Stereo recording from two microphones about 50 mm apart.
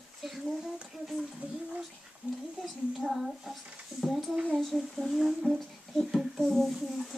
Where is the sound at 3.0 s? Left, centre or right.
Centre.